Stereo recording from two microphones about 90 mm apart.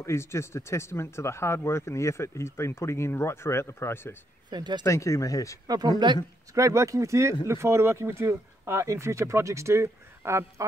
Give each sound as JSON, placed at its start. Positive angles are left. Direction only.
{"t": 0.0, "sound": "speech", "side_deg": 30}
{"t": 4.5, "sound": "speech", "side_deg": -55}
{"t": 4.8, "sound": "speech", "side_deg": 35}
{"t": 5.7, "sound": "speech", "side_deg": -45}
{"t": 6.5, "sound": "speech", "side_deg": -35}